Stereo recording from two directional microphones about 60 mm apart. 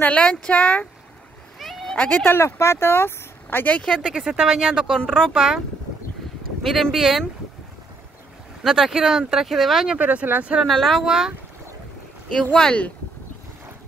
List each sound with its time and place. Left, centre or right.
0.0 s speech: centre
1.6 s a sound: centre
2.2 s speech: left
4.0 s speech: centre
5.0 s speech: centre
5.3 s speech: centre
6.6 s speech: centre
8.6 s speech: centre
9.8 s speech: right
10.7 s speech: centre
11.1 s speech: centre
12.5 s speech: centre